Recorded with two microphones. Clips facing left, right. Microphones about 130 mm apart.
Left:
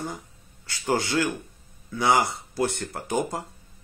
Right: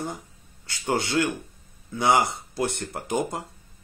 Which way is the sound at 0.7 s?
20° right (ahead or behind).